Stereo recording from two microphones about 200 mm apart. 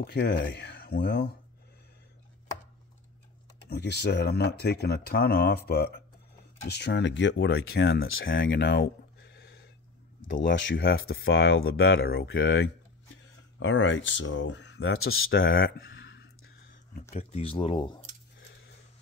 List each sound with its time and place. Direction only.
0.0 s speech: 55° left (ahead or behind)
3.6 s speech: 55° left (ahead or behind)
8.5 s a sound: 55° left (ahead or behind)
10.4 s speech: 60° left (ahead or behind)
11.1 s speech: 75° left (ahead or behind)
17.1 s speech: 30° left (ahead or behind)